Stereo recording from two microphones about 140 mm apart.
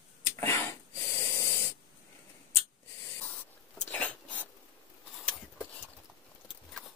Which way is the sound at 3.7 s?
10° left (ahead or behind).